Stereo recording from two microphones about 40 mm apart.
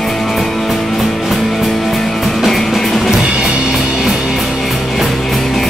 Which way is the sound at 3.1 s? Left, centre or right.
Centre.